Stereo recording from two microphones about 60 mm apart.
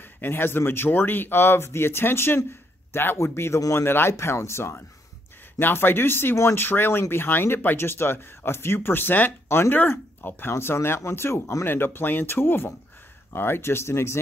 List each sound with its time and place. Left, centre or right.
0.2 s speech: left